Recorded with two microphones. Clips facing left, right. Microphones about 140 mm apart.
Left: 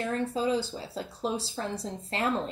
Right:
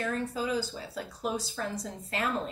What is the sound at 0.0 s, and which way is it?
A woman's voice, 25° left (ahead or behind).